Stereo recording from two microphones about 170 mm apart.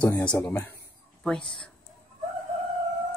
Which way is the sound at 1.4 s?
30° left (ahead or behind).